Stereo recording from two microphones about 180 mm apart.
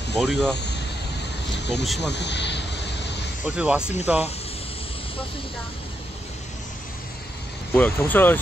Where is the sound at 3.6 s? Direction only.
5° right (ahead or behind).